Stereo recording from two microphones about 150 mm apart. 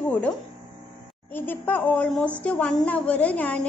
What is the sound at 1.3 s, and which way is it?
A woman's voice, 15° left (ahead or behind).